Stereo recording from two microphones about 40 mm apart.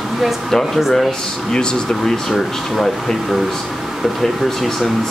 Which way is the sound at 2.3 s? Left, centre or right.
Centre.